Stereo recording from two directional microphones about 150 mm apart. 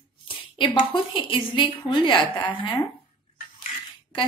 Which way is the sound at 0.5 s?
30° left (ahead or behind).